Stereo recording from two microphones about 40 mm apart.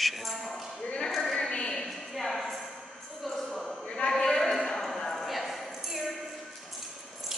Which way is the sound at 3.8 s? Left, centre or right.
Centre.